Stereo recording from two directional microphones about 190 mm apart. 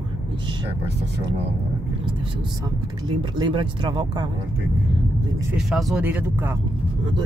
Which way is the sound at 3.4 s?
25° right (ahead or behind).